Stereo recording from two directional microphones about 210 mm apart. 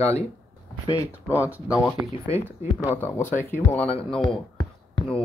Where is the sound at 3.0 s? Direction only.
10° left (ahead or behind).